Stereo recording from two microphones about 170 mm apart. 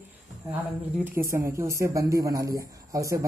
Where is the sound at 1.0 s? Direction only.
15° right (ahead or behind).